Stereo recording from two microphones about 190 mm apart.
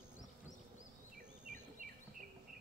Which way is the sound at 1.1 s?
45° right (ahead or behind).